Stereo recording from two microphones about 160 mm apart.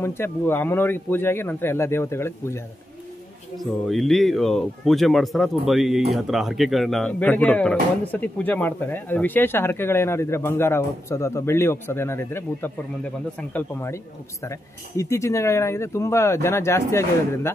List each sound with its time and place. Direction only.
0.0 s speech: 15° left (ahead or behind)
3.5 s speech: centre (ahead or behind); by 17.5 s 15° left (ahead or behind)